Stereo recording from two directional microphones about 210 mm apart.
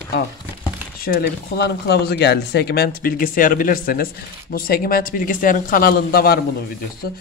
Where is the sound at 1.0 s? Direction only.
45° left (ahead or behind).